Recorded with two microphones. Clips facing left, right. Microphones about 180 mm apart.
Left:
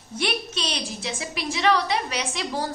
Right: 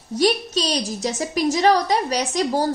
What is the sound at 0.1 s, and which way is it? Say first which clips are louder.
A woman's voice: right 9 dB; 40° right (ahead or behind).